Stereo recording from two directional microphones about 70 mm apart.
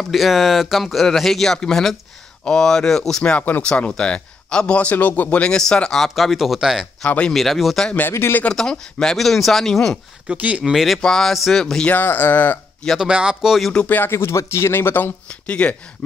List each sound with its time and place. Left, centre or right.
0.0 s speech: centre
5.6 s speech: centre
7.1 s speech: centre
7.3 s speech: centre
8.1 s speech: left
8.5 s speech: centre
10.2 s speech: centre
10.6 s speech: centre
11.0 s speech: centre
11.9 s speech: left
13.0 s speech: centre
13.8 s speech: left
14.1 s speech: left
15.2 s speech: centre